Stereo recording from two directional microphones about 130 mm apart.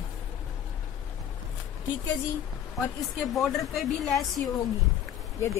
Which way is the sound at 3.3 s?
Centre (ahead or behind).